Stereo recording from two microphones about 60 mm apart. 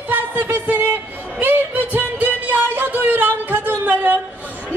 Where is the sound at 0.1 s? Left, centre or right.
Right.